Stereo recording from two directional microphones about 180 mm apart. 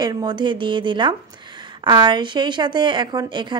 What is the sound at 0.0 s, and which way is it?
A woman's voice, 20° right (ahead or behind).